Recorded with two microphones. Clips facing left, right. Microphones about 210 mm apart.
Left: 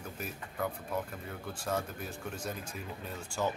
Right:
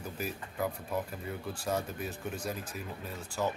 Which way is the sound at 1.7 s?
5° right (ahead or behind).